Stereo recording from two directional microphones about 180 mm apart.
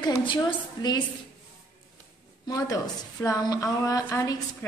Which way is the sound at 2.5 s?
20° left (ahead or behind).